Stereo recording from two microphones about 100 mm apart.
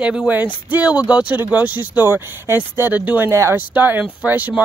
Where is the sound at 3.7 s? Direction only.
15° right (ahead or behind).